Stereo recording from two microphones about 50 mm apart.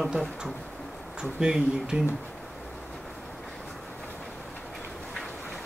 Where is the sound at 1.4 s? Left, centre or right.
Centre.